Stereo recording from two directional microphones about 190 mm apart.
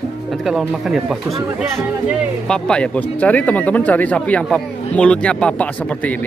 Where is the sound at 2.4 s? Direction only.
5° left (ahead or behind).